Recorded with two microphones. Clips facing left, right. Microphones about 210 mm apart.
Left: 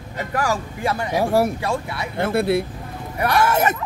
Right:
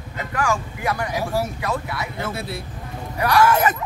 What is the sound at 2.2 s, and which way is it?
Speech, 60° left (ahead or behind).